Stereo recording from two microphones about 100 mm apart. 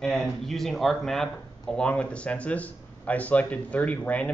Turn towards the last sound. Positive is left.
turn(degrees=15)  # may be behind; listen again after turning